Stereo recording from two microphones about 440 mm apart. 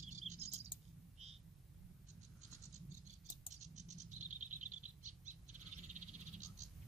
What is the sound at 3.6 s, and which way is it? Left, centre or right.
Bird, centre.